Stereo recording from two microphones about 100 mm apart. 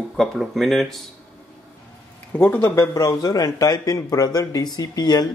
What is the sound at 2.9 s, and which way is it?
Speech, 35° left (ahead or behind).